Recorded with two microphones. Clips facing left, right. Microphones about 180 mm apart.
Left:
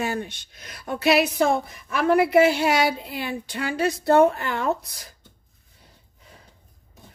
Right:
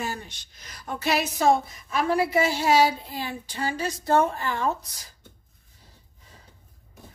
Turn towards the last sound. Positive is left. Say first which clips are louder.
# left 3 dB
turn(degrees=65)  # may be behind; listen again after turning